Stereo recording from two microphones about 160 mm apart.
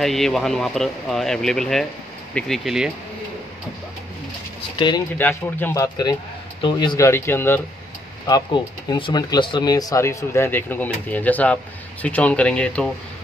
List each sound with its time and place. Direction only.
0.0 s speech: centre (ahead or behind)
4.7 s speech: 25° left (ahead or behind)
5.1 s speech: 10° left (ahead or behind)
6.6 s speech: 30° left (ahead or behind)
7.1 s speech: 15° left (ahead or behind)
8.3 s speech: 25° left (ahead or behind); by 12.9 s 5° left (ahead or behind)